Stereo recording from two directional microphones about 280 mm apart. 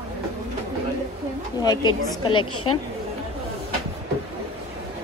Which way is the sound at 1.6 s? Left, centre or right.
Centre.